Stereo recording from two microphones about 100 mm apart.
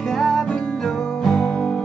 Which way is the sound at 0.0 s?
Centre (ahead or behind).